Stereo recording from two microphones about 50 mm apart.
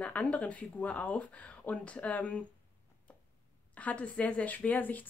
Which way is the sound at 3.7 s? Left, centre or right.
Left.